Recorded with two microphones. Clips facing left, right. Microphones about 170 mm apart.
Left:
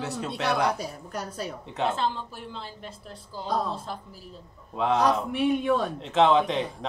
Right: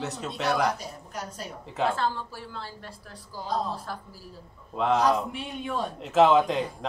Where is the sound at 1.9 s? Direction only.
20° left (ahead or behind).